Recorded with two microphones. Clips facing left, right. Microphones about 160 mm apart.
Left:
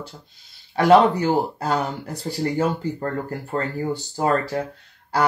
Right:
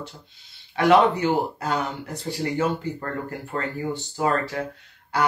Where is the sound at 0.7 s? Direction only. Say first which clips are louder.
Left 3 dB; 40° left (ahead or behind).